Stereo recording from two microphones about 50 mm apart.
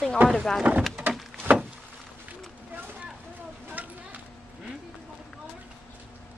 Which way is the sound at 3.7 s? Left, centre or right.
Right.